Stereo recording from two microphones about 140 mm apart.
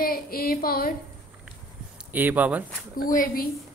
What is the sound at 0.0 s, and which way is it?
Speech, 90° left.